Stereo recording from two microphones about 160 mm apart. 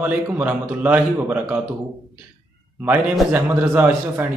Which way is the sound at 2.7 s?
10° right (ahead or behind).